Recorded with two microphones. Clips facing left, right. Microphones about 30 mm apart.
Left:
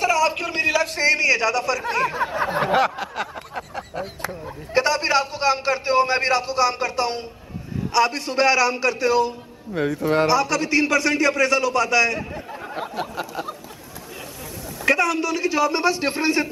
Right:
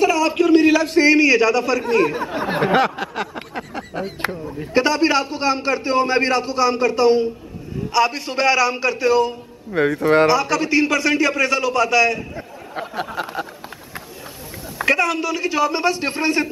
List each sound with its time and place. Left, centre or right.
0.0 s a man's voice: centre
1.9 s a man's voice: centre
2.6 s a man's voice: centre
3.5 s a sound: centre
4.7 s a man's voice: centre
14.9 s a man's voice: centre